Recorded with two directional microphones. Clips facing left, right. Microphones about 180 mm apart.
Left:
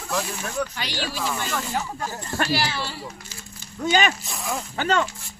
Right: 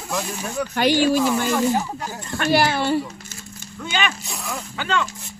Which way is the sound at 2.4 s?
50° right (ahead or behind).